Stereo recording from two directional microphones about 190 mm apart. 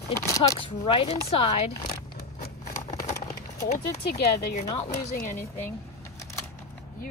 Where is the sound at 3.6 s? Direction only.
60° left (ahead or behind).